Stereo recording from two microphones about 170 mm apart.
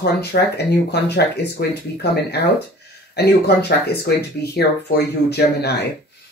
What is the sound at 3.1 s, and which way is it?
Speech, 70° left (ahead or behind).